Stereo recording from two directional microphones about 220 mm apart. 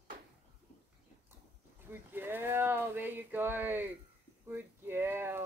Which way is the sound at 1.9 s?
10° right (ahead or behind).